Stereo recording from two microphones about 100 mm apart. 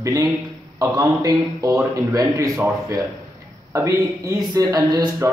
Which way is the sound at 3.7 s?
35° right (ahead or behind).